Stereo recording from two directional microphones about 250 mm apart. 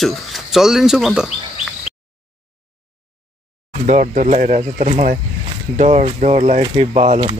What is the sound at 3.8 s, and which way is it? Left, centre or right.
Speech, right.